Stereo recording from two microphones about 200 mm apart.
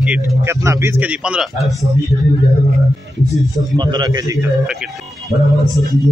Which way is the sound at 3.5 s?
20° right (ahead or behind).